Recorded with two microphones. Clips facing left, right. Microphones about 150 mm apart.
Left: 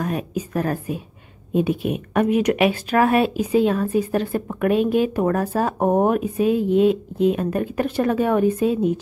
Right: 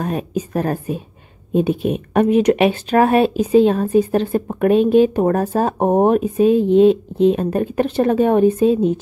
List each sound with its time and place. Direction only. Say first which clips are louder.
0.0 s a woman's voice: right 3 dB; 35° right (ahead or behind)